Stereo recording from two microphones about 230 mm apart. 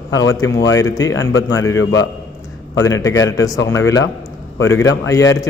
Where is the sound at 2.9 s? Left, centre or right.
Centre.